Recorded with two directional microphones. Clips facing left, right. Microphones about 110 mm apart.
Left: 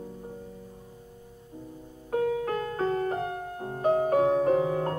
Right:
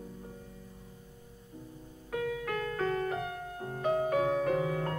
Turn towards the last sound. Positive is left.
turn(degrees=30)  # may be behind; listen again after turning